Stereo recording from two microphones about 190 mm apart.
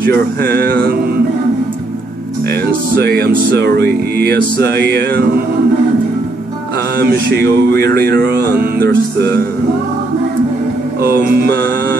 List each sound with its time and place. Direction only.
0.0 s mantra: 60° right (ahead or behind)
3.0 s mantra: 55° right (ahead or behind)
7.0 s mantra: 55° right (ahead or behind)
11.1 s music: 50° right (ahead or behind)